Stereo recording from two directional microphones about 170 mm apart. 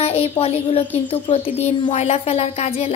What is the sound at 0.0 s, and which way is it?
Speech, 35° left (ahead or behind).